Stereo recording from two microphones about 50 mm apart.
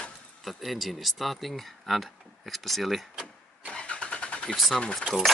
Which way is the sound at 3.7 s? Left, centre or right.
Left.